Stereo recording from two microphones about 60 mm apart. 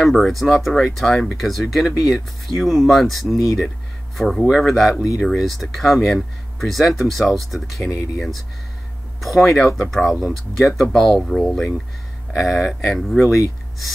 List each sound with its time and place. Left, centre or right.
0.0 s speech: centre
12.3 s speech: centre
13.2 s speech: left